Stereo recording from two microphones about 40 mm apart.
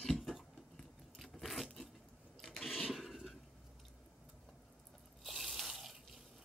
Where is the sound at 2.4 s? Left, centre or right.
Centre.